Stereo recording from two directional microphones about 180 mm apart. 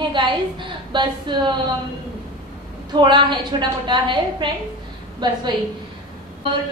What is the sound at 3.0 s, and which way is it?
A woman's voice, 25° right (ahead or behind).